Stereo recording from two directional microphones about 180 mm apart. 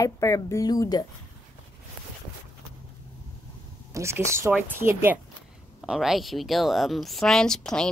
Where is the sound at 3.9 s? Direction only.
15° right (ahead or behind).